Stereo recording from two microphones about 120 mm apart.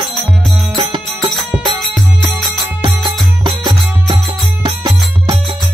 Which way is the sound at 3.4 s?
40° right (ahead or behind).